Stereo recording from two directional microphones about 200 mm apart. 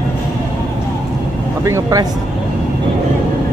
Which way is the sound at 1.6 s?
15° right (ahead or behind).